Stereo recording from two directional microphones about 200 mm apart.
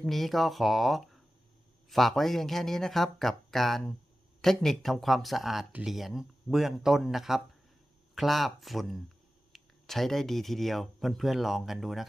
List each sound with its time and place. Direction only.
0.0 s speech: centre (ahead or behind)